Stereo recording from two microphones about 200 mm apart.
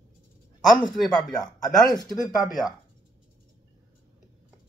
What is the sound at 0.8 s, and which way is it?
Speech, centre (ahead or behind).